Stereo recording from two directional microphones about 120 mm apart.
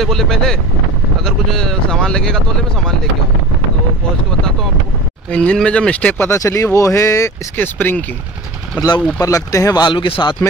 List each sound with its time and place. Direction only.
0.0 s speech: 5° left (ahead or behind)
5.3 s speech: 10° left (ahead or behind)
9.2 s speech: 25° left (ahead or behind)
9.8 s speech: 45° left (ahead or behind)